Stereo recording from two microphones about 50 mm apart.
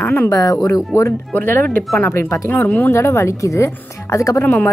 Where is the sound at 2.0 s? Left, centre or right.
Left.